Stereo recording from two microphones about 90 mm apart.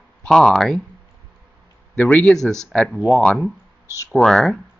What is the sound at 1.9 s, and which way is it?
Speech, 15° left (ahead or behind).